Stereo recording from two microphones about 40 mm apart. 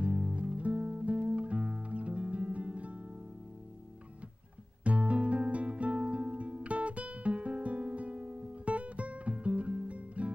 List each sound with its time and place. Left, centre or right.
0.0 s music: right
4.8 s music: right